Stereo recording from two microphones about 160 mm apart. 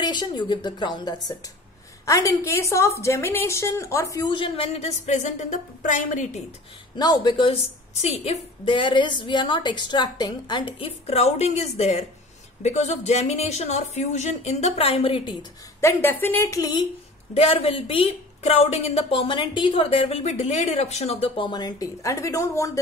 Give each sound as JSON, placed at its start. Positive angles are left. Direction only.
{"t": 0.0, "sound": "a woman's voice", "side_deg": 30}
{"t": 7.0, "sound": "a woman's voice", "side_deg": 25}
{"t": 15.8, "sound": "speech", "side_deg": 15}
{"t": 17.3, "sound": "speech", "side_deg": 40}